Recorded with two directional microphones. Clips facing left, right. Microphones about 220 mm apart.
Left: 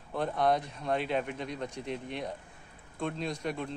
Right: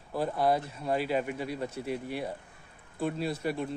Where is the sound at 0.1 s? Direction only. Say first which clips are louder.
Right 1 dB; 5° right (ahead or behind).